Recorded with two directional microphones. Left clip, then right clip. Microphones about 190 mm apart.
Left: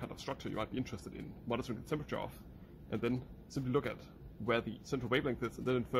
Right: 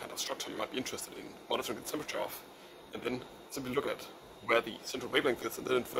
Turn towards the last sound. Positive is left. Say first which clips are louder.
# right 3 dB
turn(degrees=0)  # may be behind; listen again after turning